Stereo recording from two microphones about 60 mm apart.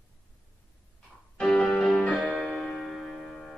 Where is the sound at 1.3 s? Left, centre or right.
Centre.